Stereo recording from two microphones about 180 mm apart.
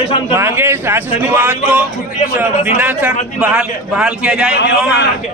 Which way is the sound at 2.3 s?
10° right (ahead or behind).